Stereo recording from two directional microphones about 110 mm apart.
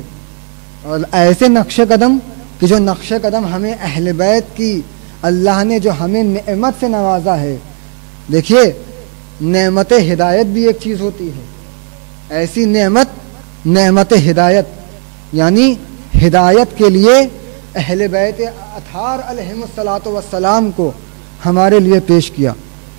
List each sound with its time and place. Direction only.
0.8 s speech: 15° right (ahead or behind)
12.3 s speech: 10° right (ahead or behind)